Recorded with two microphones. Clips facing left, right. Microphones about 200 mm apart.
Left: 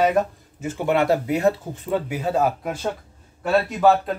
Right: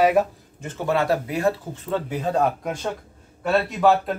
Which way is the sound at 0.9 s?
25° left (ahead or behind).